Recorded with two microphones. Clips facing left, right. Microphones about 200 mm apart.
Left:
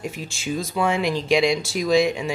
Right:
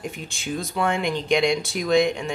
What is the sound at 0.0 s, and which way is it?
Speech, centre (ahead or behind).